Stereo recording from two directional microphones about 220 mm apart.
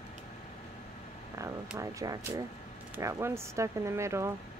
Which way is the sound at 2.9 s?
15° right (ahead or behind).